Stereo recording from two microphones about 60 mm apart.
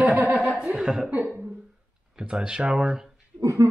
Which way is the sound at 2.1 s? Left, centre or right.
Centre.